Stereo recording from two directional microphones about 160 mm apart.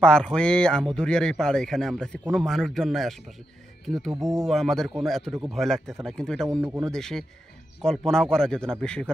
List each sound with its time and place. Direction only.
0.0 s speech: 5° left (ahead or behind)
6.6 s speech: 20° right (ahead or behind)
6.9 s speech: 5° left (ahead or behind)